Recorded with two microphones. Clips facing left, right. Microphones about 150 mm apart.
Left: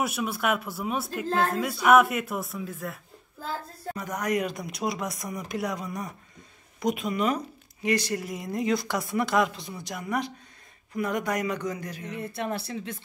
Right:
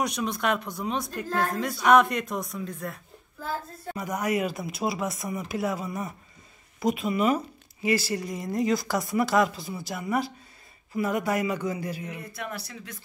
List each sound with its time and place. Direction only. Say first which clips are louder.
0.0 s speech: even; 5° left (ahead or behind)
3.9 s a man's voice: right 1 dB; 10° right (ahead or behind)
12.2 s speech: left 5 dB; 25° left (ahead or behind)